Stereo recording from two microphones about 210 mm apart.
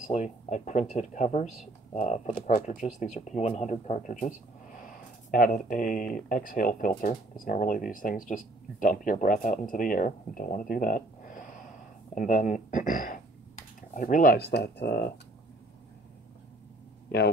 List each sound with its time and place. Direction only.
0.1 s speech: 35° left (ahead or behind); by 15.0 s 50° left (ahead or behind)